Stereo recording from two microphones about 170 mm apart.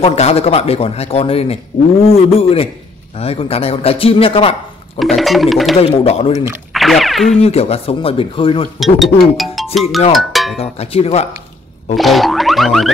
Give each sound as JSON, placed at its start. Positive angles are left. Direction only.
{"t": 0.0, "sound": "speech", "side_deg": 35}
{"t": 4.9, "sound": "speech", "side_deg": 0}
{"t": 5.8, "sound": "speech", "side_deg": 35}
{"t": 6.7, "sound": "music", "side_deg": 0}
{"t": 7.4, "sound": "speech", "side_deg": 35}
{"t": 8.7, "sound": "speech", "side_deg": 0}
{"t": 10.1, "sound": "cowbell", "side_deg": 0}
{"t": 10.6, "sound": "speech", "side_deg": 35}
{"t": 12.0, "sound": "speech", "side_deg": 0}